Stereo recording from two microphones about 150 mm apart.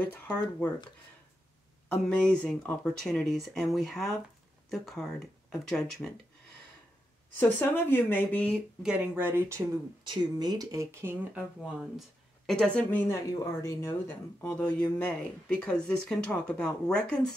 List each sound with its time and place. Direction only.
1.9 s speech: 5° left (ahead or behind)
7.3 s speech: 15° left (ahead or behind)
8.8 s speech: 10° right (ahead or behind)
12.4 s speech: 5° left (ahead or behind)